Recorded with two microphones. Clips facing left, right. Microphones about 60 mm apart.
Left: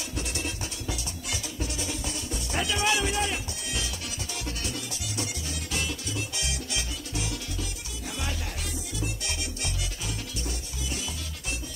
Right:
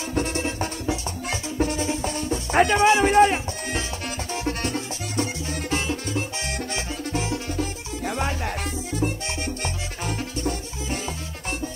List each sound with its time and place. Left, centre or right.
0.1 s music: right